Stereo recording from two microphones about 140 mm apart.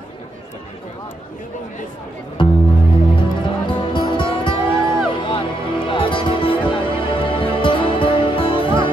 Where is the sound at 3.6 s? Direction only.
35° left (ahead or behind).